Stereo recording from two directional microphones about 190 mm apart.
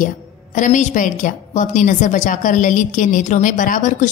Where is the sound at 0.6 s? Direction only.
40° left (ahead or behind).